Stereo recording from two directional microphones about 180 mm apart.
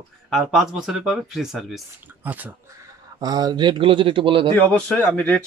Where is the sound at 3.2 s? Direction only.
20° right (ahead or behind).